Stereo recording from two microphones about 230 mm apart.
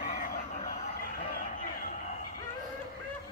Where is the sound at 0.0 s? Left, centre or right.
Left.